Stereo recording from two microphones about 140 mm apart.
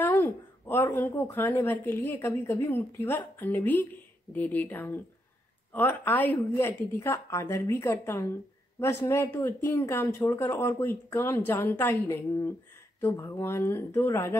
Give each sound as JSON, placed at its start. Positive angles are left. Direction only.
{"t": 0.0, "sound": "a woman's voice", "side_deg": 15}